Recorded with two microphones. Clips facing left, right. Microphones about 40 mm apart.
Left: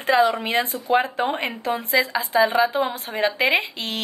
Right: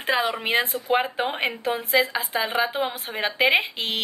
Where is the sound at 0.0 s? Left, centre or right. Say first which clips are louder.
Left 5 dB; centre.